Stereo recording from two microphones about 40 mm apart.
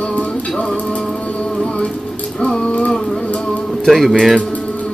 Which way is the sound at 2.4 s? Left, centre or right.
Left.